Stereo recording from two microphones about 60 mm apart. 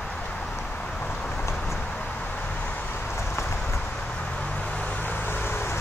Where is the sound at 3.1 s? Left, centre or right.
Left.